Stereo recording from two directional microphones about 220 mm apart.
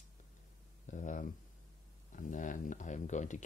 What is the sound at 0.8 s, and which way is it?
Speech, 35° left (ahead or behind).